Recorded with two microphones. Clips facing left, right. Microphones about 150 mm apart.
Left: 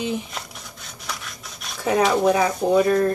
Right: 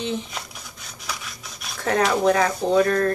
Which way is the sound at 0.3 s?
Centre (ahead or behind).